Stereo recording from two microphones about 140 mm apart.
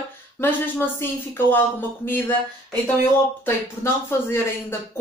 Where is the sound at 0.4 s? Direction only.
15° left (ahead or behind).